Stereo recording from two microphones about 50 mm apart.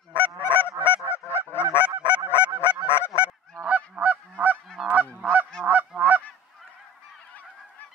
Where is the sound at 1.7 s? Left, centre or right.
Left.